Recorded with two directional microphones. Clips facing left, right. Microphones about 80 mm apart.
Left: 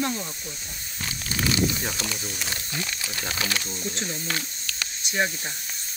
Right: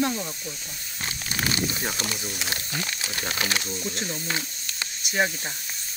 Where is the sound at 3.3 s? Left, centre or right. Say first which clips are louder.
Right 1 dB; right.